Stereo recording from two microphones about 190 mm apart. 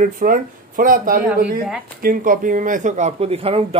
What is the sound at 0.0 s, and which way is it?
Speech, 45° right (ahead or behind).